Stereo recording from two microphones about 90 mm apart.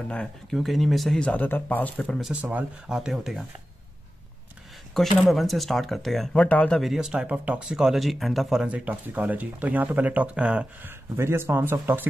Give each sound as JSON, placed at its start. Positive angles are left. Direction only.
{"t": 0.1, "sound": "speech", "side_deg": 5}
{"t": 1.4, "sound": "speech", "side_deg": 20}
{"t": 2.9, "sound": "speech", "side_deg": -5}
{"t": 4.9, "sound": "speech", "side_deg": 0}
{"t": 6.3, "sound": "speech", "side_deg": 15}
{"t": 6.8, "sound": "speech", "side_deg": -5}
{"t": 8.6, "sound": "speech", "side_deg": -15}
{"t": 11.1, "sound": "speech", "side_deg": -30}